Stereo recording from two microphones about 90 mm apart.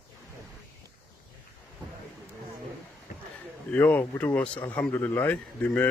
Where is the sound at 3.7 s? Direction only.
20° left (ahead or behind).